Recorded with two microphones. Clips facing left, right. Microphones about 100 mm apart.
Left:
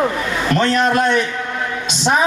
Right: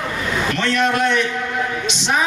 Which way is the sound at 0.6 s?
35° left (ahead or behind).